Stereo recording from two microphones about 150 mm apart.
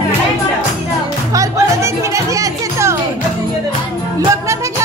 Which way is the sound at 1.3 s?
20° right (ahead or behind).